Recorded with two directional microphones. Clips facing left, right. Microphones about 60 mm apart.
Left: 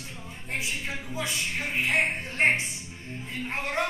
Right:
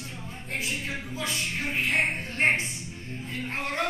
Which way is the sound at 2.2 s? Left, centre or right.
Left.